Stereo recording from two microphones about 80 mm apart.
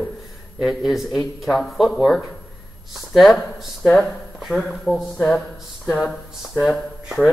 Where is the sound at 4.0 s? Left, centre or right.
Centre.